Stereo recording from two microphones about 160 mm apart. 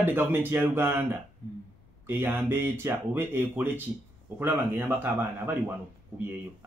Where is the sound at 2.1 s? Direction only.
15° right (ahead or behind).